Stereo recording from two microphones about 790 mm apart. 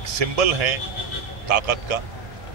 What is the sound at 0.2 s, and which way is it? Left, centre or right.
A man's voice, right.